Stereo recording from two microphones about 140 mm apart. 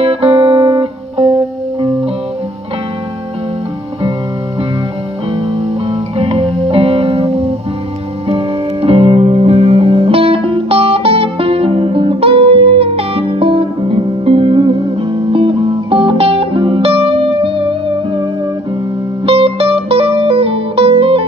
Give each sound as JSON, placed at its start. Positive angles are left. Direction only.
{"t": 0.0, "sound": "music", "side_deg": -45}
{"t": 0.5, "sound": "music", "side_deg": -20}
{"t": 1.1, "sound": "music", "side_deg": -50}
{"t": 5.9, "sound": "music", "side_deg": -45}
{"t": 19.2, "sound": "music", "side_deg": -45}